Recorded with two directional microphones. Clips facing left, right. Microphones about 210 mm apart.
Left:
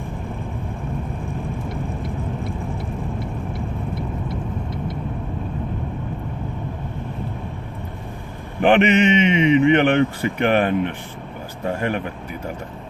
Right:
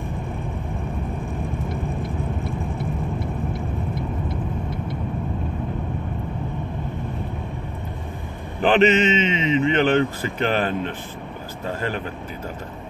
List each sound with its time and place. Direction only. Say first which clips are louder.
8.6 s mantra: left 2 dB; 15° left (ahead or behind)